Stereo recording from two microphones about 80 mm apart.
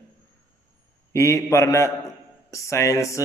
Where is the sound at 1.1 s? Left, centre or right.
Left.